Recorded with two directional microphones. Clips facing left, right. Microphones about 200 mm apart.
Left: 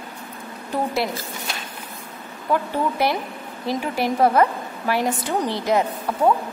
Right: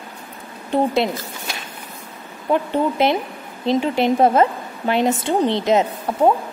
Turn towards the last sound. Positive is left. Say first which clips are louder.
# right 3 dB
turn(degrees=-25)  # may be behind; listen again after turning